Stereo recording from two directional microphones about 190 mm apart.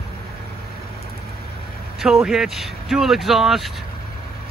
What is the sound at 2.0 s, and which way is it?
Speech, centre (ahead or behind).